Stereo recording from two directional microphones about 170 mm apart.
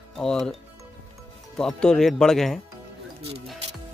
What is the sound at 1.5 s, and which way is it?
Speech, 5° left (ahead or behind).